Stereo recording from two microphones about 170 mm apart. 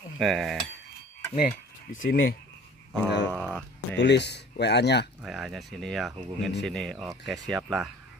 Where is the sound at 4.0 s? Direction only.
90° left.